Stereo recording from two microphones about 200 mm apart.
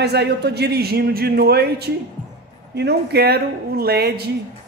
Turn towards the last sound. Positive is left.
turn(degrees=-50)  # may be behind; listen again after turning